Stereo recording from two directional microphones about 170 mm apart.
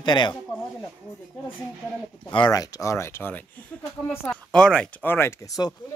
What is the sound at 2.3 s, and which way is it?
Speech, 25° left (ahead or behind).